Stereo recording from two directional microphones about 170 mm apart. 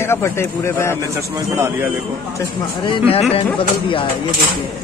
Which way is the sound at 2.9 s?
35° left (ahead or behind).